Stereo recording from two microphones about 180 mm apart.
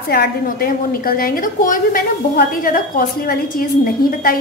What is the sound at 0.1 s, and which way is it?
A woman's voice, 55° left (ahead or behind).